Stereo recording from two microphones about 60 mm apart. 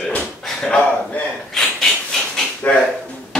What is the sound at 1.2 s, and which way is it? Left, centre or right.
Speech, left.